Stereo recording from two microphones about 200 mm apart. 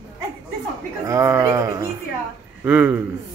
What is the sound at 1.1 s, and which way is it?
Speech, 15° right (ahead or behind).